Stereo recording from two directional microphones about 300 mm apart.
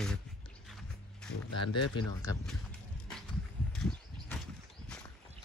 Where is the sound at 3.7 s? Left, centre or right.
Centre.